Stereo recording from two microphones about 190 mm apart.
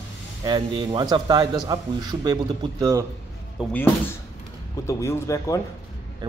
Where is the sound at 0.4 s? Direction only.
25° right (ahead or behind).